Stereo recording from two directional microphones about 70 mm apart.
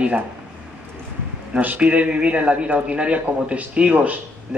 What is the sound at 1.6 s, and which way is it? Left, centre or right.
A man's voice, centre.